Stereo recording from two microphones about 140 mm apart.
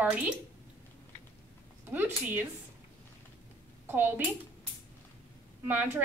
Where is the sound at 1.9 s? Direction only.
15° right (ahead or behind).